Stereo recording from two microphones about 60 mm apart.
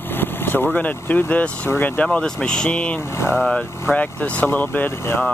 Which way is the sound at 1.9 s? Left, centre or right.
Centre.